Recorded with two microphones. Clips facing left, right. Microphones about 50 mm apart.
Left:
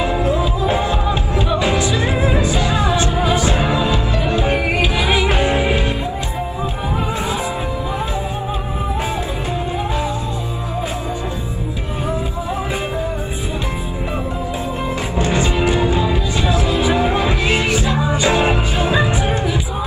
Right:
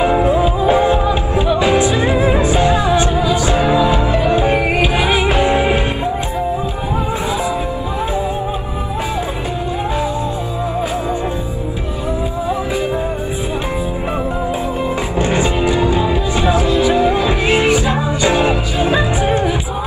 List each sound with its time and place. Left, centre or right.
0.0 s music: centre
2.0 s music: centre
2.4 s music: right
3.2 s music: left
3.7 s music: right
15.1 s music: right
16.8 s music: centre
17.3 s music: centre